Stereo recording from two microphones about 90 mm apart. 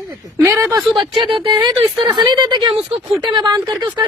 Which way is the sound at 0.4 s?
25° right (ahead or behind).